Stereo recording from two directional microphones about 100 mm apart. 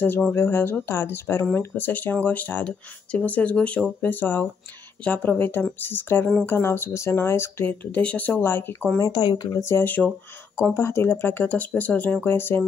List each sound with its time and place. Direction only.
0.3 s speech: 20° left (ahead or behind)
8.4 s speech: 20° left (ahead or behind)
9.0 s speech: 45° left (ahead or behind)
9.6 s speech: 25° left (ahead or behind)
10.6 s speech: 30° left (ahead or behind)